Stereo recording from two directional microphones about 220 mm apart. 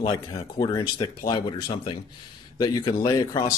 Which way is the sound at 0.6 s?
20° left (ahead or behind).